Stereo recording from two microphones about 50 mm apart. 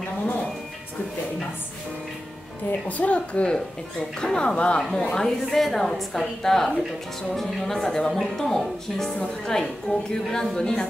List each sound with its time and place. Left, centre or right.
2.7 s a woman's voice: left
4.2 s a woman's voice: centre
5.0 s speech: centre